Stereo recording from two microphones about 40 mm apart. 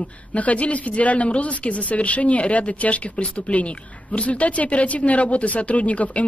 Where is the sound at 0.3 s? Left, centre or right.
Left.